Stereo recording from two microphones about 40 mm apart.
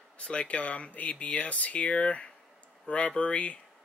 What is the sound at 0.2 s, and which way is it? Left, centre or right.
Speech, left.